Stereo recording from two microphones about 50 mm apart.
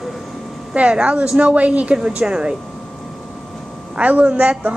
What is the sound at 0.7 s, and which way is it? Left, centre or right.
A man's voice, right.